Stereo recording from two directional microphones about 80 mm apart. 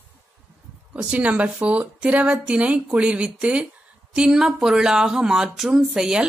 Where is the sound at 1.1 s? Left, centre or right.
Centre.